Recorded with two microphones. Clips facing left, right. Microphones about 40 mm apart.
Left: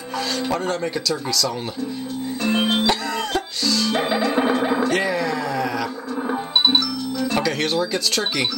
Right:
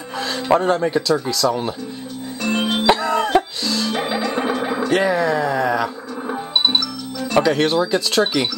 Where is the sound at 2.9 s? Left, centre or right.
Right.